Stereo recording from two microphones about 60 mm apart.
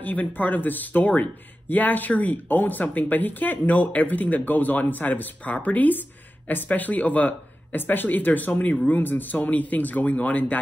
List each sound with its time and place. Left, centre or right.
0.0 s speech: left